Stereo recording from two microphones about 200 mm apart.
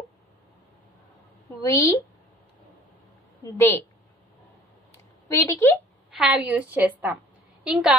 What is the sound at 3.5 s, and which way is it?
Speech, 10° left (ahead or behind).